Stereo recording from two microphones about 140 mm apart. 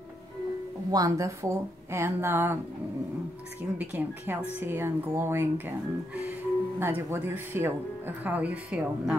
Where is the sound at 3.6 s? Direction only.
10° right (ahead or behind).